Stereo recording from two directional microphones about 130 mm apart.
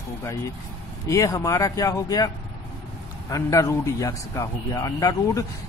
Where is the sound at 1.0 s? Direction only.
25° left (ahead or behind).